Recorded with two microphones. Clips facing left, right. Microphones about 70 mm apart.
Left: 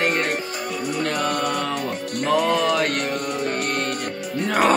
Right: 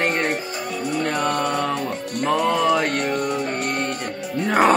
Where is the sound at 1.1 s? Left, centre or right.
Right.